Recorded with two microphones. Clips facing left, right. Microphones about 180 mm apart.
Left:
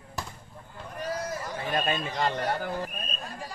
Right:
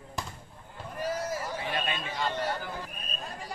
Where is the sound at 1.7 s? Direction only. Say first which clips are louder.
Left 5 dB; 45° left (ahead or behind).